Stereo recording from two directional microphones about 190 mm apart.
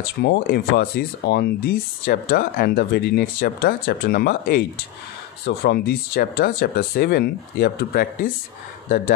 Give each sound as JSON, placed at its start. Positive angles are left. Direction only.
{"t": 0.2, "sound": "speech", "side_deg": 60}